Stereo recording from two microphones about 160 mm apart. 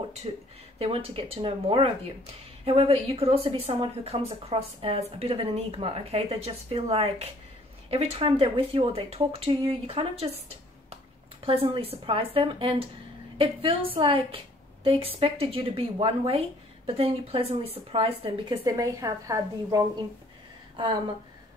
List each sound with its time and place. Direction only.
0.2 s speech: 40° right (ahead or behind)
11.4 s a woman's voice: 35° right (ahead or behind)